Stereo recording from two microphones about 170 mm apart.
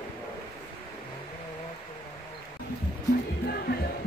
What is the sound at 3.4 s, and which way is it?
Music, 65° left (ahead or behind).